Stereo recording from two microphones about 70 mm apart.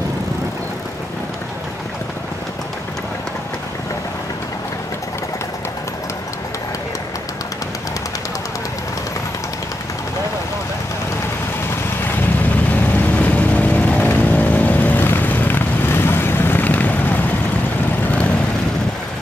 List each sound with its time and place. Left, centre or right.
12.9 s vehicle: left